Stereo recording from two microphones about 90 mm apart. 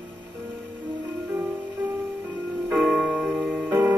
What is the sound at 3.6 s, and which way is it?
Music, 20° right (ahead or behind).